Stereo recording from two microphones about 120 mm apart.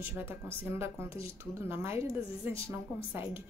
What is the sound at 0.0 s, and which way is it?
A woman's voice, 20° right (ahead or behind).